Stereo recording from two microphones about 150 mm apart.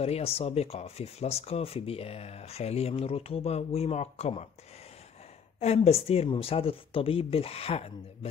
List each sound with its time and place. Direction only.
0.0 s speech: 40° left (ahead or behind)
5.6 s speech: 45° left (ahead or behind)